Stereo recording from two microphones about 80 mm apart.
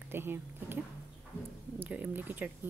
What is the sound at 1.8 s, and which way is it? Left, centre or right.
Speech, right.